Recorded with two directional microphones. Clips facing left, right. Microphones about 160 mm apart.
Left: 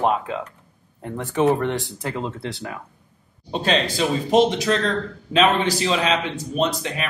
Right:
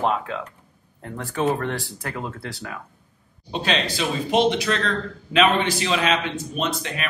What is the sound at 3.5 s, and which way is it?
A man's voice, 40° left (ahead or behind).